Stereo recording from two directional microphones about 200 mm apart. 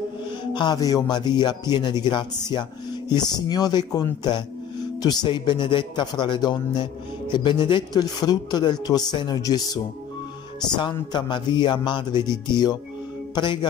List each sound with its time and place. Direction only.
0.5 s speech: 20° left (ahead or behind)
10.8 s speech: 25° left (ahead or behind)
13.3 s speech: 20° left (ahead or behind)